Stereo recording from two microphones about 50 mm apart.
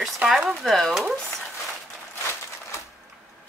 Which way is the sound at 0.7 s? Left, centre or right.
Centre.